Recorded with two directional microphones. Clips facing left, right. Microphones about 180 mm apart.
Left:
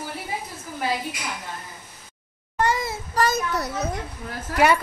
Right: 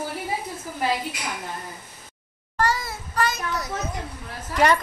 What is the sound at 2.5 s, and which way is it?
Child singing, 20° left (ahead or behind).